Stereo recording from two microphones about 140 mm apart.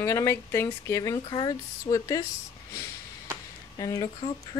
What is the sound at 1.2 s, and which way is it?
Speech, 35° left (ahead or behind).